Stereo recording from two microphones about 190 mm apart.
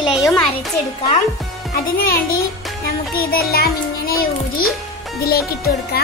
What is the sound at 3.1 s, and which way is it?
A child's voice, 50° left (ahead or behind).